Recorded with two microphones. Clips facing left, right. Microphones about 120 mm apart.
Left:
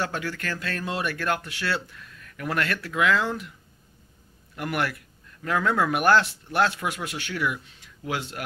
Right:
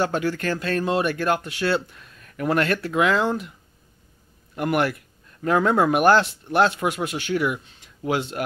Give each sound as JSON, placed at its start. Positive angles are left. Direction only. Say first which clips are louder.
{"t": 0.0, "sound": "speech", "louder": "right 7 dB", "side_deg": -25}
{"t": 4.6, "sound": "speech", "louder": "right 6 dB", "side_deg": -25}